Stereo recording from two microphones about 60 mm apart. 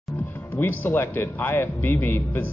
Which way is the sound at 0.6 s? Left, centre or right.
Left.